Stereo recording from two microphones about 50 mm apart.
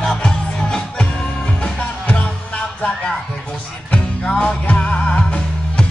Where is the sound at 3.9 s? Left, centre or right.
Centre.